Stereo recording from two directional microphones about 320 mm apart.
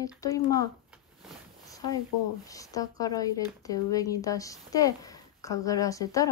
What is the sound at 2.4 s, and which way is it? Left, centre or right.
Speech, centre.